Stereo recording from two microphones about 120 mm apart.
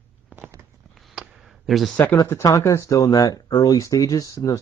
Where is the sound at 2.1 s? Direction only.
25° left (ahead or behind).